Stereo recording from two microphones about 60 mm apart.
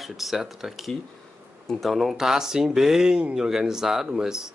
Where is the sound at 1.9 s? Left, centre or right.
Centre.